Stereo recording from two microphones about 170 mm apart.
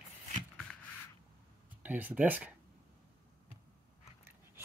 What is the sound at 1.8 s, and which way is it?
Speech, 10° right (ahead or behind).